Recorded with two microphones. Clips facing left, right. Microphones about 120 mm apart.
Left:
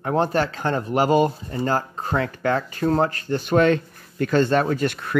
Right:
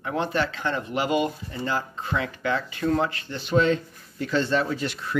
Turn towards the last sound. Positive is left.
turn(degrees=50)  # may be behind; listen again after turning